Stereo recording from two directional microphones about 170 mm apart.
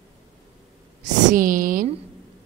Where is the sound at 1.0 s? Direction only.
50° right (ahead or behind).